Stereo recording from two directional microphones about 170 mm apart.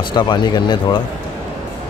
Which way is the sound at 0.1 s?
25° left (ahead or behind).